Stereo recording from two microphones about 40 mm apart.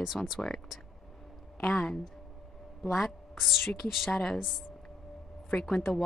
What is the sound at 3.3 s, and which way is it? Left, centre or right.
Speech, centre.